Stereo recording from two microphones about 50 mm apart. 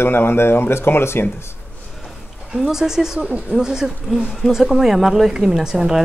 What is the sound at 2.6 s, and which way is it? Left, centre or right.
A woman's voice, centre.